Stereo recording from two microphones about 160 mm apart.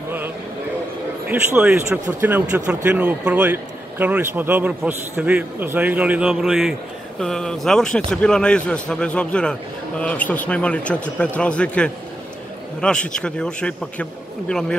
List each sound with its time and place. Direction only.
1.3 s a man's voice: 10° right (ahead or behind)